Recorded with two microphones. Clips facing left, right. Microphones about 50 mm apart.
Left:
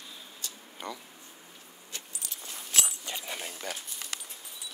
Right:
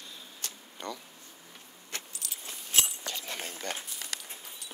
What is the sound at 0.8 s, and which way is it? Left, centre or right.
Speech, centre.